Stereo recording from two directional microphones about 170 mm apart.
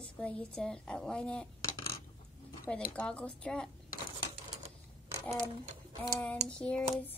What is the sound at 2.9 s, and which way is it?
Speech, 10° left (ahead or behind).